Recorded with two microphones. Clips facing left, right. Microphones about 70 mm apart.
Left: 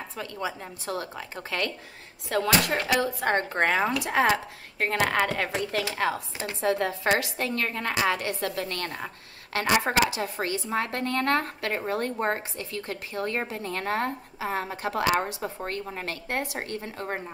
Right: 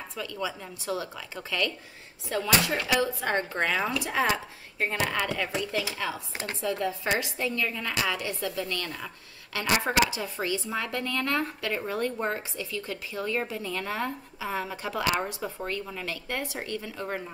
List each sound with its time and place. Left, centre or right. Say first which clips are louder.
0.2 s speech: even; left
2.2 s speech: left 2 dB; left
2.7 s speech: left 1 dB; left
3.1 s a woman's voice: left 3 dB; left